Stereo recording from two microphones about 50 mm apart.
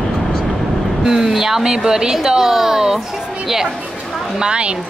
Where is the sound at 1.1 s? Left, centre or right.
Centre.